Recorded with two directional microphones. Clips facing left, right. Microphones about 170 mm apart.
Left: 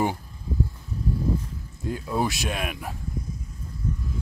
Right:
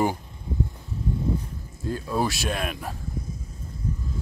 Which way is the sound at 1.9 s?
20° left (ahead or behind).